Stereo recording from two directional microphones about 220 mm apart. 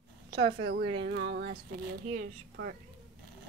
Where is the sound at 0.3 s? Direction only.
45° right (ahead or behind).